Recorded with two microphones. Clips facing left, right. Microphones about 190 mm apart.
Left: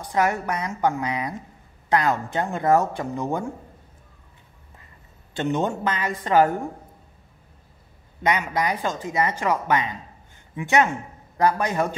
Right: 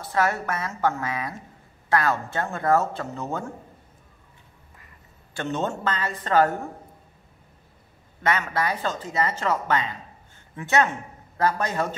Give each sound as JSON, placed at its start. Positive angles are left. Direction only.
{"t": 0.0, "sound": "speech", "side_deg": 15}
{"t": 5.3, "sound": "speech", "side_deg": 15}
{"t": 8.2, "sound": "a man's voice", "side_deg": 15}